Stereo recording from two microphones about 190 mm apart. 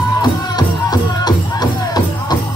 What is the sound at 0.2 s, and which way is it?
Music, 20° left (ahead or behind).